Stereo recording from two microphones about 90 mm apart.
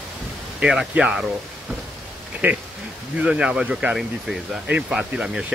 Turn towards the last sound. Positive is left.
turn(degrees=-10)  # may be behind; listen again after turning